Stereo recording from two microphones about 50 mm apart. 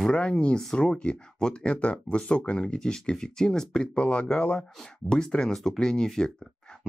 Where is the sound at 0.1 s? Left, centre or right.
Left.